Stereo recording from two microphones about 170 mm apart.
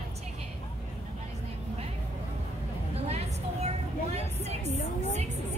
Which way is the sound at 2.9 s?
40° right (ahead or behind).